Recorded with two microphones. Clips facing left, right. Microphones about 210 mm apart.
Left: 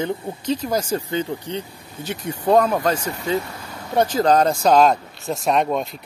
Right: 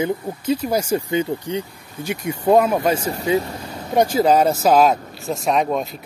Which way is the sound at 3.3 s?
30° right (ahead or behind).